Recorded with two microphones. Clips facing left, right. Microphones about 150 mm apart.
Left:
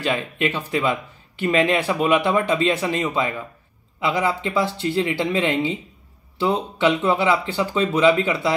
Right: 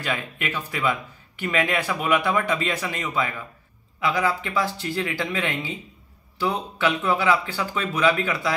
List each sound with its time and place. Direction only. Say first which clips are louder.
0.0 s speech: left 6 dB; 30° left (ahead or behind)